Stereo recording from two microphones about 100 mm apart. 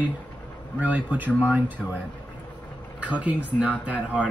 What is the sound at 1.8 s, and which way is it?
Speech, 15° left (ahead or behind).